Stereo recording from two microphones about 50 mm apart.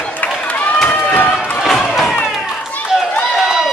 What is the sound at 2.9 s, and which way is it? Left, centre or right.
Run, centre.